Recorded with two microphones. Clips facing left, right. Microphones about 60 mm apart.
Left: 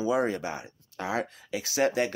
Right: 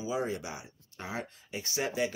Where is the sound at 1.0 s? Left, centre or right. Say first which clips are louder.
Left 8 dB; left.